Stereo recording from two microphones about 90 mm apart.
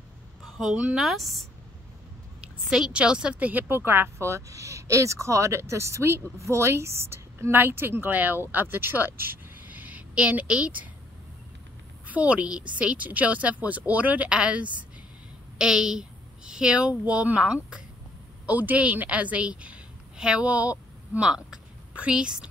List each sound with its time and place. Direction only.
0.7 s a woman's voice: 10° right (ahead or behind)
1.0 s speech: centre (ahead or behind)
2.7 s a woman's voice: 10° right (ahead or behind)
12.1 s a woman's voice: 15° right (ahead or behind)